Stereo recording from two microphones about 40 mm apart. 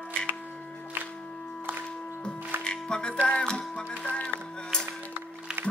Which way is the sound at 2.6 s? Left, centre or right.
Left.